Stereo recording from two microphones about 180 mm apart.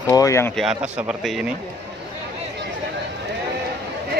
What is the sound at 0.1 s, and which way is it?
Speech, 15° left (ahead or behind).